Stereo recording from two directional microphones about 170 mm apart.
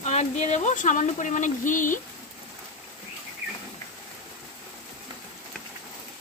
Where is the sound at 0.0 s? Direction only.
40° left (ahead or behind).